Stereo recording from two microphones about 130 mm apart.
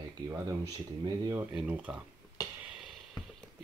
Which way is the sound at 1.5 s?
10° right (ahead or behind).